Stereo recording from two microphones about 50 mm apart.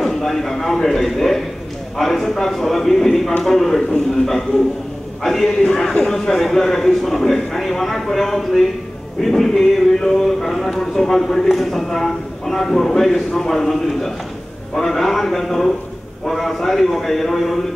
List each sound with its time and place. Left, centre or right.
0.0 s a man's voice: centre